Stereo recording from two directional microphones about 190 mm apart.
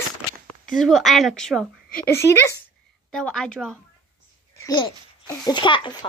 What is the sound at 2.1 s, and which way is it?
Speech, 15° left (ahead or behind).